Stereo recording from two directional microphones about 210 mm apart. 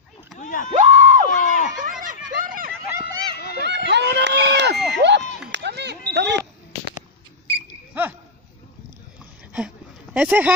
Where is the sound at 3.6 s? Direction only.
55° right (ahead or behind).